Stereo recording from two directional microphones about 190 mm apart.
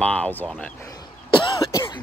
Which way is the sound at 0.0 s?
5° left (ahead or behind).